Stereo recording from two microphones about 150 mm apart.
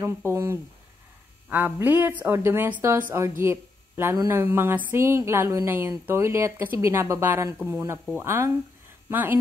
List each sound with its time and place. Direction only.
0.0 s speech: 15° right (ahead or behind)